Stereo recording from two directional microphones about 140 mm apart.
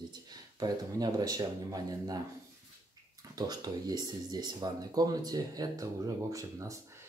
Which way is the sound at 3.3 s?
30° right (ahead or behind).